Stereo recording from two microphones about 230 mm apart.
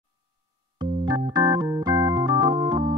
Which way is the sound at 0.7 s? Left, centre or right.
Centre.